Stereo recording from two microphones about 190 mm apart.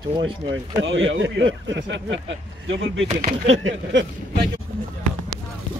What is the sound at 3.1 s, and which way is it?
Speech, 35° right (ahead or behind).